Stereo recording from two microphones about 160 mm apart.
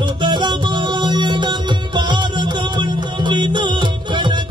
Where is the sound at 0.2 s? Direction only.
30° right (ahead or behind).